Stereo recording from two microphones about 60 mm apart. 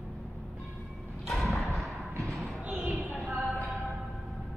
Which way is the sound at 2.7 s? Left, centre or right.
Right.